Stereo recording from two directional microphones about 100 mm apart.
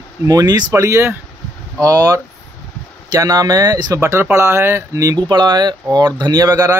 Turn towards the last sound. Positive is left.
turn(degrees=-35)  # may be behind; listen again after turning